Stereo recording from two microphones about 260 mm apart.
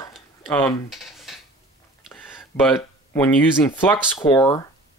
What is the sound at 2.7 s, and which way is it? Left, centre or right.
Speech, centre.